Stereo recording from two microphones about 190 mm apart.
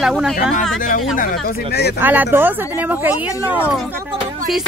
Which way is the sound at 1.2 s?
50° left (ahead or behind).